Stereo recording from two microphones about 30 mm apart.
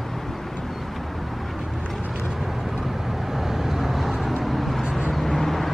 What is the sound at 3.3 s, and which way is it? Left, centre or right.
Vehicle, centre.